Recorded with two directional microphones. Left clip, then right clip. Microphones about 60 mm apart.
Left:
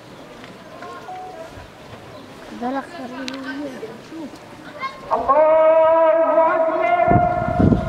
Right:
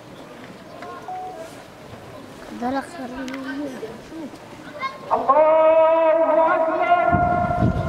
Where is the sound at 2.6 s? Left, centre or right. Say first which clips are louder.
Even; right.